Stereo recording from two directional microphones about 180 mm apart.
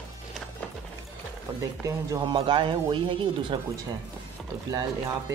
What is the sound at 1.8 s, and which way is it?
Speech, 20° right (ahead or behind).